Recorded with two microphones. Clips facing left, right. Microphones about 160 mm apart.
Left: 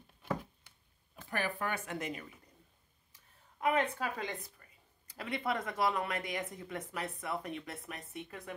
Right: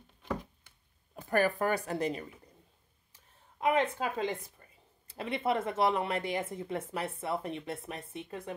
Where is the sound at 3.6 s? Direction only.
25° right (ahead or behind).